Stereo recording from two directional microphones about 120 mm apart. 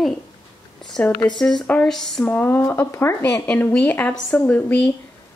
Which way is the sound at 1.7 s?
5° left (ahead or behind).